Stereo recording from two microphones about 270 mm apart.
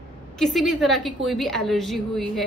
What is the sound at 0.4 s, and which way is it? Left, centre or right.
A woman's voice, centre.